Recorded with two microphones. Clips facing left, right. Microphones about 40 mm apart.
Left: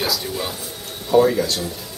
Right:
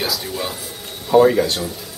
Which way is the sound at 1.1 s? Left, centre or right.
Right.